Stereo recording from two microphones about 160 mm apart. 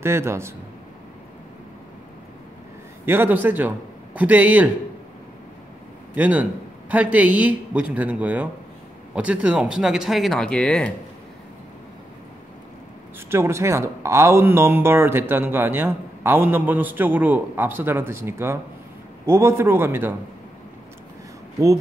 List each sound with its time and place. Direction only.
0.0 s speech: 15° right (ahead or behind)
3.1 s speech: 15° right (ahead or behind)
6.1 s speech: 10° right (ahead or behind); by 10.9 s 5° left (ahead or behind)
13.3 s speech: 15° right (ahead or behind)